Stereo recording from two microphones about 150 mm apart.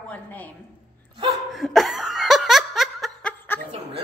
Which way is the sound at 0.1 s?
10° left (ahead or behind).